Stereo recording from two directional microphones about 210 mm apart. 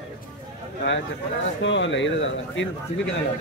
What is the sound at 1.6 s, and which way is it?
Speech, 60° left (ahead or behind).